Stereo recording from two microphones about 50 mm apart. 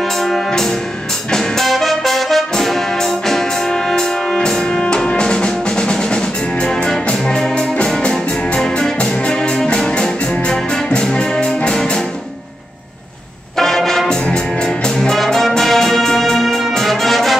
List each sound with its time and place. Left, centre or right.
0.0 s music: centre
8.9 s music: left
13.6 s brass instrument: centre